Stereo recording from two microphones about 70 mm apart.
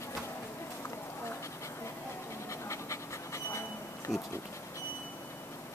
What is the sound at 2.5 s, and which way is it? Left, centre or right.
Pant, left.